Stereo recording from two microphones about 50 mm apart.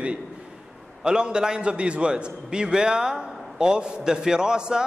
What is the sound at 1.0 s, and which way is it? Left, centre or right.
A man's voice, centre.